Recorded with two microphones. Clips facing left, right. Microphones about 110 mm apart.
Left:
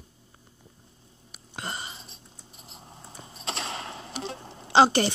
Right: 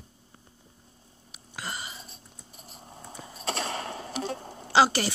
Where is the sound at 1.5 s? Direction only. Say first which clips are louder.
Left 1 dB; 30° left (ahead or behind).